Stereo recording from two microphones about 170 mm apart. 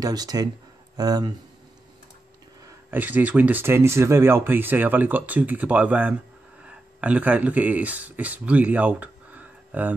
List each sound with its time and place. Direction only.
0.0 s speech: 20° right (ahead or behind)
2.6 s speech: 10° right (ahead or behind)